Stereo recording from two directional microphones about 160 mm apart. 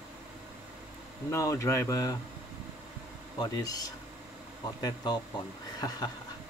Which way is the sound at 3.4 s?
25° left (ahead or behind).